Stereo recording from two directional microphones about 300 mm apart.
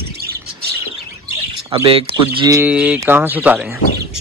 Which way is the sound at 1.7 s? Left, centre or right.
Centre.